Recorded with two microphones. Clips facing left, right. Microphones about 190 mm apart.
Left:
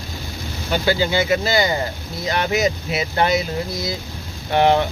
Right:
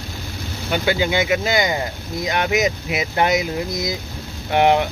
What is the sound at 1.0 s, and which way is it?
Speech, 15° right (ahead or behind).